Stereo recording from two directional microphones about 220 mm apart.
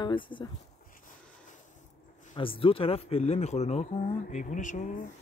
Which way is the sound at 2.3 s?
25° left (ahead or behind).